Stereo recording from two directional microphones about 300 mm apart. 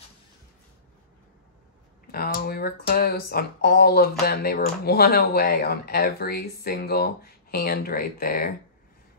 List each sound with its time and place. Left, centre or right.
2.0 s speech: left